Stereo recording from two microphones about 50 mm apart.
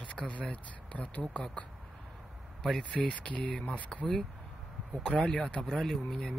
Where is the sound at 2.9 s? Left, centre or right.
Left.